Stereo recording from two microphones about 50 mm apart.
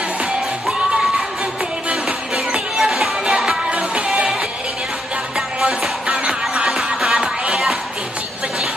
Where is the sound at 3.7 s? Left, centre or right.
Right.